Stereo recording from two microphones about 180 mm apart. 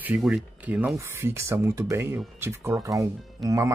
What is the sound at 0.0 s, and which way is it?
Speech, 10° right (ahead or behind).